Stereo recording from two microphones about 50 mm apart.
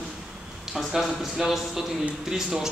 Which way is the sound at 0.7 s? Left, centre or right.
Centre.